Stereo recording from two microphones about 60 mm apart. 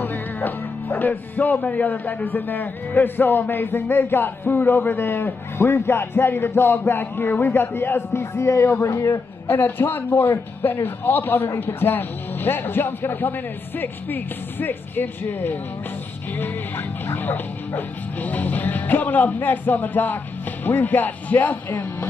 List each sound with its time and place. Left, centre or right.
0.0 s a man's voice: left
16.3 s music: left